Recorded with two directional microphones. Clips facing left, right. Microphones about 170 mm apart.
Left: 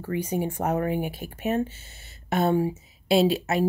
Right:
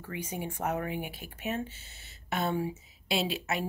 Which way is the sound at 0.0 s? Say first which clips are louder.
Left 10 dB; 40° left (ahead or behind).